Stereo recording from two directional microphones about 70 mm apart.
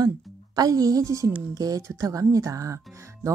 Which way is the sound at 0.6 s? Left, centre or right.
Right.